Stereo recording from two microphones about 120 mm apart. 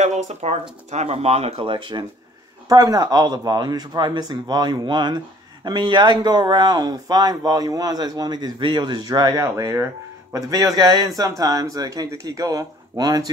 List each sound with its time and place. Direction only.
0.0 s speech: 75° right (ahead or behind); by 13.3 s 35° right (ahead or behind)